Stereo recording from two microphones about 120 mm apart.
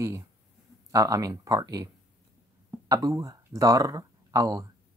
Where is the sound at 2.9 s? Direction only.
30° right (ahead or behind).